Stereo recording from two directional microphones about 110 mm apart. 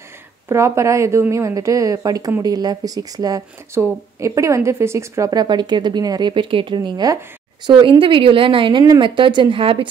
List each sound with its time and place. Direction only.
0.5 s speech: 25° right (ahead or behind); by 9.8 s 55° right (ahead or behind)